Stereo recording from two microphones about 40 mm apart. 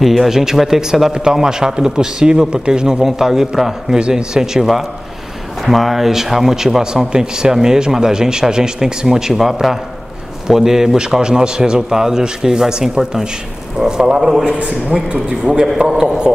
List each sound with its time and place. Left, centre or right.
0.0 s a man's voice: centre